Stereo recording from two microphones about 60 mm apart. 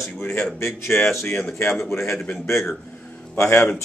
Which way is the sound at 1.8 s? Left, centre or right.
Left.